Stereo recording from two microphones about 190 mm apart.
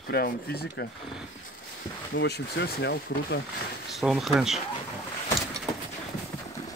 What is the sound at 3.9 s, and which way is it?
Speech, centre (ahead or behind).